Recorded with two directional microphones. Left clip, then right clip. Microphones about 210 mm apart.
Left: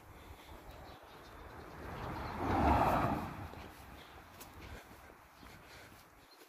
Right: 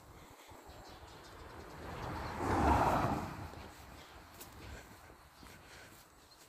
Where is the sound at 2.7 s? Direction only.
10° left (ahead or behind).